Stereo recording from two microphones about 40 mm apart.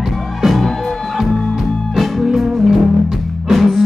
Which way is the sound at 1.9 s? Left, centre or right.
Centre.